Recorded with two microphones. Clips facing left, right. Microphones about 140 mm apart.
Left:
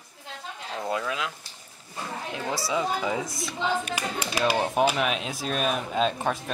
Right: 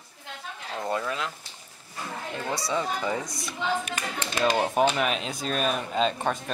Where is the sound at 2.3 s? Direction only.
5° left (ahead or behind).